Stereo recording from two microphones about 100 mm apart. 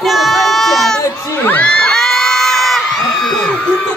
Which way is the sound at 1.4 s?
15° left (ahead or behind).